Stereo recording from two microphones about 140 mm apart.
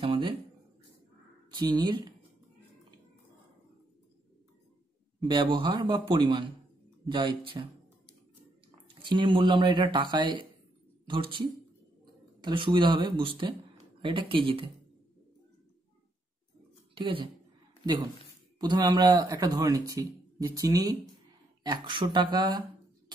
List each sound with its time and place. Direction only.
0.0 s a sound: 35° right (ahead or behind)
1.5 s speech: 30° right (ahead or behind)
5.3 s speech: 35° right (ahead or behind)
9.0 s speech: 35° right (ahead or behind)
16.9 s a woman's voice: 40° right (ahead or behind)
18.6 s speech: 30° right (ahead or behind)